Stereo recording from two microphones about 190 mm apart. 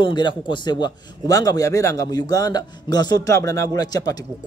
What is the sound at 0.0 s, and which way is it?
A man's voice, 25° left (ahead or behind).